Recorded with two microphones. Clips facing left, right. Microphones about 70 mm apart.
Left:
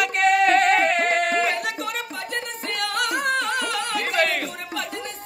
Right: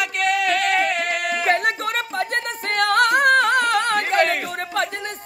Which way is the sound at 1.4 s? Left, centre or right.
Right.